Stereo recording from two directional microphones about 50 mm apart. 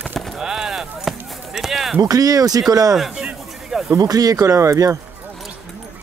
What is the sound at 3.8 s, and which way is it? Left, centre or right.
Speech, right.